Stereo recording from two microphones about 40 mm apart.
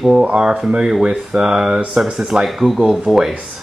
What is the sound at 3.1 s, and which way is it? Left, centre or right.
Speech, centre.